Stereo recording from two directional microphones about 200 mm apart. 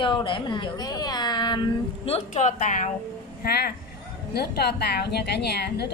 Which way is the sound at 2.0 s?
35° left (ahead or behind).